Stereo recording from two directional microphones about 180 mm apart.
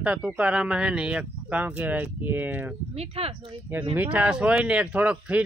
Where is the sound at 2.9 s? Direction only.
35° right (ahead or behind).